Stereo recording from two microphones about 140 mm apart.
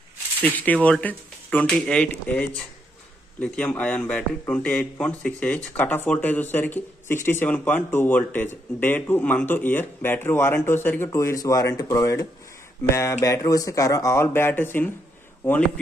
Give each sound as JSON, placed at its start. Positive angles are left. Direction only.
{"t": 0.4, "sound": "a man's voice", "side_deg": 10}